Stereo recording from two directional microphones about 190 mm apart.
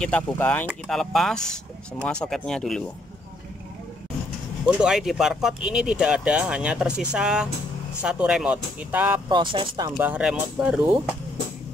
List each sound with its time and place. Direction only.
0.0 s speech: 10° left (ahead or behind)
4.6 s speech: 5° right (ahead or behind)
9.3 s speech: 25° right (ahead or behind)
9.9 s speech: 5° right (ahead or behind)